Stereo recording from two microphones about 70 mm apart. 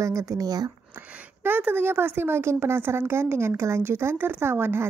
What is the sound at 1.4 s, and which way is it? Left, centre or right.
A woman's voice, right.